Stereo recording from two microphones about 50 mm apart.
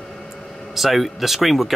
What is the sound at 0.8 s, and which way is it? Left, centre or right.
Speech, centre.